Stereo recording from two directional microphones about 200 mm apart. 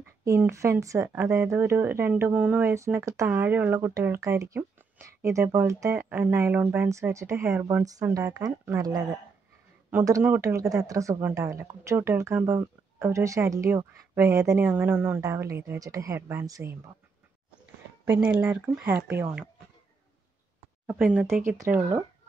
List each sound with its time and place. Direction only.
0.2 s speech: 15° right (ahead or behind)
18.2 s speech: 5° right (ahead or behind)
20.8 s speech: 5° right (ahead or behind)